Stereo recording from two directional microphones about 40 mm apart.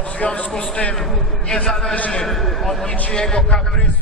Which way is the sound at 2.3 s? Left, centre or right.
Centre.